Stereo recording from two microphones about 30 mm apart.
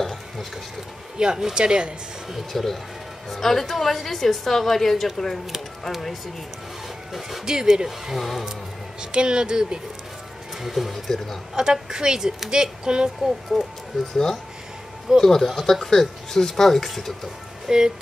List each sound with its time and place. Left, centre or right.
1.1 s speech: right
2.5 s a woman's voice: centre
7.2 s speech: centre
7.4 s speech: right
8.1 s speech: centre
9.1 s speech: right
10.6 s speech: centre
10.9 s a woman's voice: centre
11.5 s speech: right
13.2 s speech: centre
15.1 s a woman's voice: centre
17.6 s speech: right